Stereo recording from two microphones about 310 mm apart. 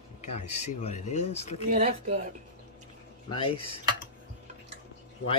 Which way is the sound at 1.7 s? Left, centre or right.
Right.